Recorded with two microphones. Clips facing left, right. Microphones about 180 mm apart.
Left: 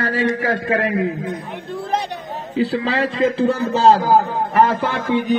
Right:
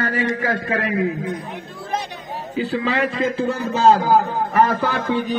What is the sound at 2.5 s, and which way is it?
A man's voice, 30° left (ahead or behind).